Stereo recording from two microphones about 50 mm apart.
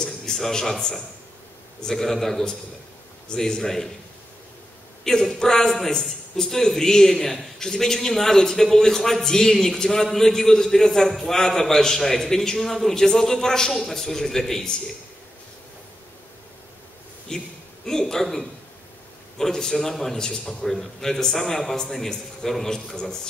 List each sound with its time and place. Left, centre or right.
0.0 s a man's voice: centre
5.0 s a man's voice: centre
17.3 s a man's voice: centre